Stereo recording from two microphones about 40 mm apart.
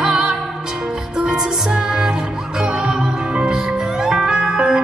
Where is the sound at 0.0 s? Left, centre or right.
Centre.